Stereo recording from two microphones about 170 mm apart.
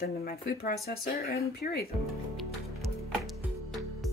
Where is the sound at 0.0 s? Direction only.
60° left (ahead or behind).